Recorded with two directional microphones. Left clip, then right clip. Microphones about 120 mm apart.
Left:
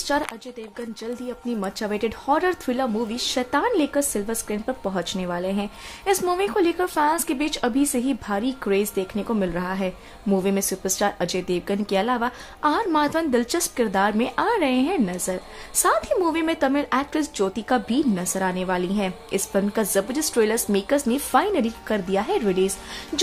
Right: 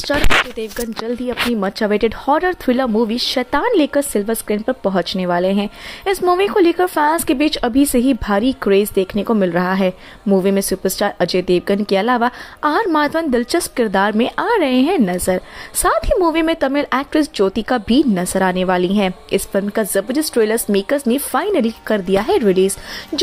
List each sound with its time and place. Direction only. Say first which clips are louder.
0.6 s speech: right 10 dB; 60° right (ahead or behind)
10.3 s speech: right 8 dB; 35° right (ahead or behind)